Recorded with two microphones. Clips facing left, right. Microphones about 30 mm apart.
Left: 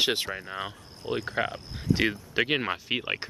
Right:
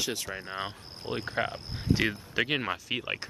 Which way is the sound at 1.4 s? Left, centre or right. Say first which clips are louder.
Left 2 dB; centre.